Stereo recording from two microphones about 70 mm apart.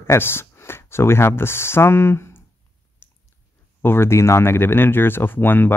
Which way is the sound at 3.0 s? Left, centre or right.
Left.